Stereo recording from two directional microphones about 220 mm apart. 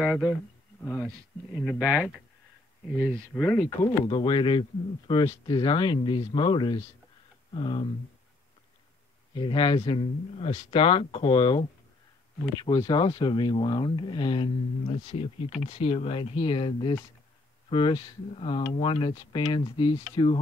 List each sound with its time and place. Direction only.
0.0 s speech: 5° right (ahead or behind)
1.6 s speech: 5° right (ahead or behind)
3.3 s speech: centre (ahead or behind)
3.8 s speech: 20° left (ahead or behind)
9.3 s speech: 20° left (ahead or behind)